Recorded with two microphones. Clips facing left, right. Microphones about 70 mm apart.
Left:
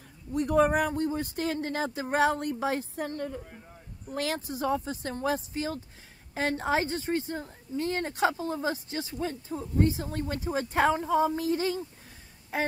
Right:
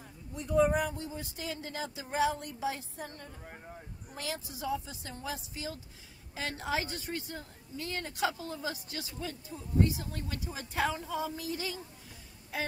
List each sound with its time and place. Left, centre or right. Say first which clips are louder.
0.3 s a woman's voice: left 4 dB; left